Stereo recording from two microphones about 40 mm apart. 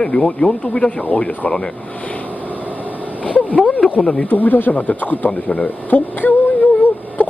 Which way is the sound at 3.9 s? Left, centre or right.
Left.